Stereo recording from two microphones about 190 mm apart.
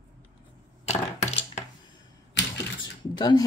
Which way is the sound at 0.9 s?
35° left (ahead or behind).